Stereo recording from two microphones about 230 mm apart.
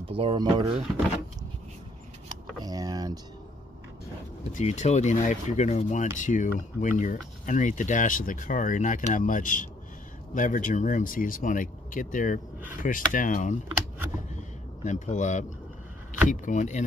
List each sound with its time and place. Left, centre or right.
0.1 s speech: right
2.6 s speech: centre
4.5 s speech: left
14.9 s speech: left